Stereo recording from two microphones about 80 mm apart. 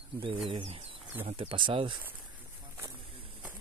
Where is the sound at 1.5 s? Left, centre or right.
Right.